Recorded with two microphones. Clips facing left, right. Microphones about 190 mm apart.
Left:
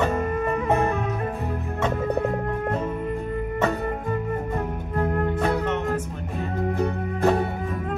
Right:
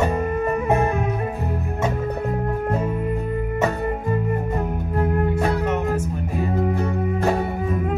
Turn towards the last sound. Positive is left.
turn(degrees=-5)  # may be behind; listen again after turning